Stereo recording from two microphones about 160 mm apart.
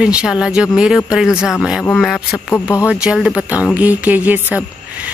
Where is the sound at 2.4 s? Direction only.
20° left (ahead or behind).